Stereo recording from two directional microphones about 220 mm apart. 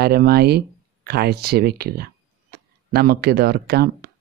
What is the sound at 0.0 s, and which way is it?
Speech, 45° right (ahead or behind).